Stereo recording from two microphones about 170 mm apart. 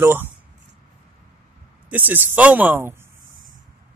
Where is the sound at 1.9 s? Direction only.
10° right (ahead or behind).